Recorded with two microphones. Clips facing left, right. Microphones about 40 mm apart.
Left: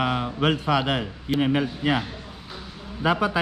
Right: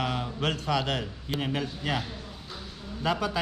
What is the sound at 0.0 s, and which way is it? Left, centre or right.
A man's voice, centre.